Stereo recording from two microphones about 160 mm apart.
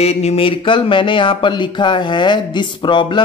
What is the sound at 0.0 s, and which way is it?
Speech, 40° left (ahead or behind).